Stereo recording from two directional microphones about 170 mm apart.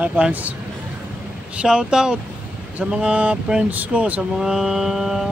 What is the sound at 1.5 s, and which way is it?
Speech, 5° right (ahead or behind).